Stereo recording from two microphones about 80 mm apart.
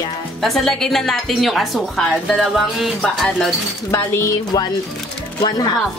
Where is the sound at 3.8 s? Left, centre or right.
Left.